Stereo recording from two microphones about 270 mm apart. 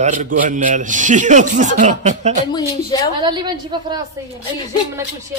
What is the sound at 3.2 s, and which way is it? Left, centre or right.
Speech, centre.